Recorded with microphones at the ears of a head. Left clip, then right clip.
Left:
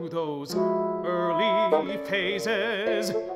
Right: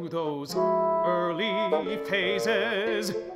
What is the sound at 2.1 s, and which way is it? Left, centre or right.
Speech, centre.